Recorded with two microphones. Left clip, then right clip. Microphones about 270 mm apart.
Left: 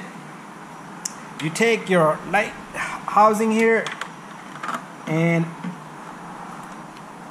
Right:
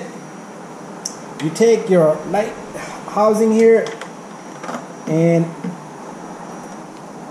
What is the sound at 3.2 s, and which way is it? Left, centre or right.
Speech, centre.